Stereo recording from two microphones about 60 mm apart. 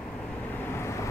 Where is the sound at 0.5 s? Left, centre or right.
Left.